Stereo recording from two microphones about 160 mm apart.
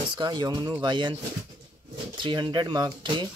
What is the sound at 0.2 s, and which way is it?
Speech, 25° right (ahead or behind).